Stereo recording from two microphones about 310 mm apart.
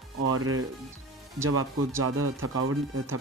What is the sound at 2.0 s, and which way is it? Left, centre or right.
Speech, right.